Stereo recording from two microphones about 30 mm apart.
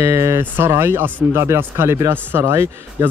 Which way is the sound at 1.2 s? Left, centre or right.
Right.